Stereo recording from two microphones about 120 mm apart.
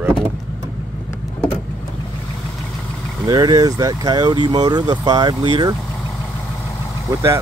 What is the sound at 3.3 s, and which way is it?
Speech, 35° right (ahead or behind).